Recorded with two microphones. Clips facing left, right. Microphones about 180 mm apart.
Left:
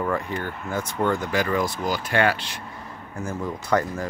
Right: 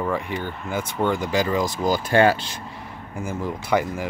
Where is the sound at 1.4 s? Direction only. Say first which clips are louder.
Right 2 dB; 20° right (ahead or behind).